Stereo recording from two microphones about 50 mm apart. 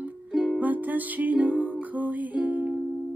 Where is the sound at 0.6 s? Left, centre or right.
Right.